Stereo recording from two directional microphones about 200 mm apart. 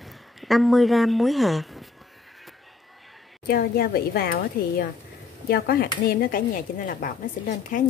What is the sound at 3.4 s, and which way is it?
A woman's voice, 50° left (ahead or behind).